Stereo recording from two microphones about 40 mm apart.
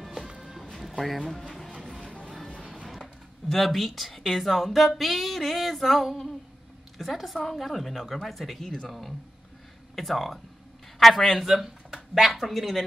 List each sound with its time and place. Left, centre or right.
0.0 s music: centre
1.7 s vehicle: centre
2.0 s music: left
2.2 s music: centre
3.4 s speech: centre